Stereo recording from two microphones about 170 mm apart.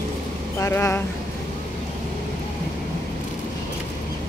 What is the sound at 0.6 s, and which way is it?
Speech, 15° left (ahead or behind).